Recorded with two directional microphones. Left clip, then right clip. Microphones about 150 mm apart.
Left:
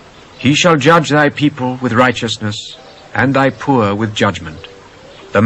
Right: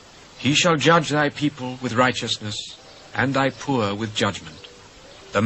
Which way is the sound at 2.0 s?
20° right (ahead or behind).